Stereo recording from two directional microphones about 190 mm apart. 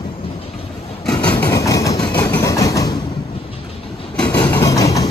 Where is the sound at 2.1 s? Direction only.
10° left (ahead or behind).